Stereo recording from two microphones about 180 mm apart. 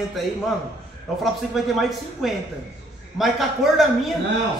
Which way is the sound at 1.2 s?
Centre (ahead or behind).